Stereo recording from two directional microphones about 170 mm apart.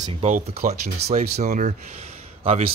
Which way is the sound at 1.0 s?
70° right (ahead or behind).